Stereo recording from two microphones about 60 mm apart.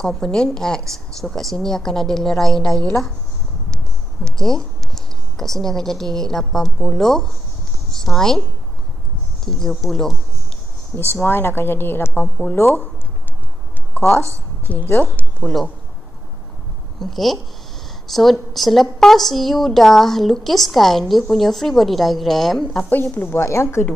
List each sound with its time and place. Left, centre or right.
0.0 s a woman's voice: centre
11.2 s speech: left
14.7 s speech: left
17.0 s a woman's voice: centre
22.8 s speech: left